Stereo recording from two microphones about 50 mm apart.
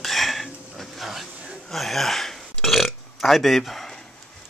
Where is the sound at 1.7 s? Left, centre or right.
Centre.